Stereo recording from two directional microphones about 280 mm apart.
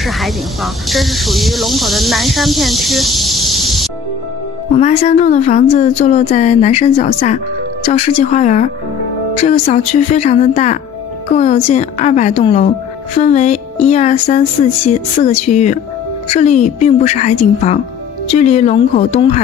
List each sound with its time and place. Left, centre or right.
0.0 s speech: centre
4.7 s a woman's voice: left